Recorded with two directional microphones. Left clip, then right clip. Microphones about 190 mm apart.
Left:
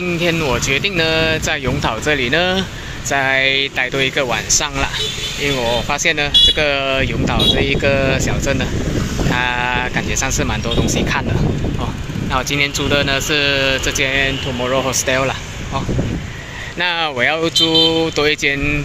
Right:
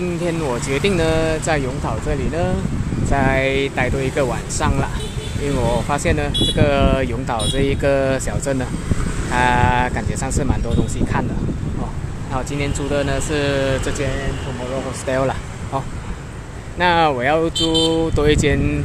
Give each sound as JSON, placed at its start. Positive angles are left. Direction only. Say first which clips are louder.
{"t": 0.2, "sound": "speech", "louder": "left 7 dB", "side_deg": 0}
{"t": 1.9, "sound": "speech", "louder": "left 7 dB", "side_deg": 10}
{"t": 3.1, "sound": "speech", "louder": "left 4 dB", "side_deg": -5}
{"t": 5.9, "sound": "speech", "louder": "left 4 dB", "side_deg": -5}
{"t": 6.8, "sound": "speech", "louder": "left 2 dB", "side_deg": -20}
{"t": 12.4, "sound": "speech", "louder": "left 7 dB", "side_deg": 0}
{"t": 15.0, "sound": "speech", "louder": "right 1 dB", "side_deg": -10}
{"t": 16.8, "sound": "speech", "louder": "right 1 dB", "side_deg": -5}